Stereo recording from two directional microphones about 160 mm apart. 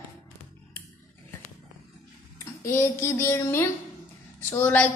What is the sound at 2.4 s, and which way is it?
A woman's voice, 15° left (ahead or behind).